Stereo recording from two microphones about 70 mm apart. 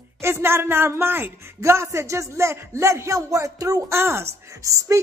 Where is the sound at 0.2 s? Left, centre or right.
Right.